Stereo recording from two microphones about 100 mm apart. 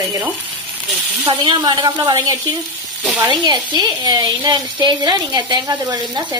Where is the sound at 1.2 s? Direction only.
50° right (ahead or behind).